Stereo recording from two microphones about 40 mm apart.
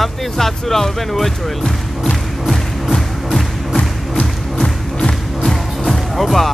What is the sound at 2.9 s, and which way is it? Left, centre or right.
Music, centre.